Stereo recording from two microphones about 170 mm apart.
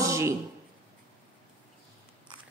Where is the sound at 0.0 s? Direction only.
15° right (ahead or behind).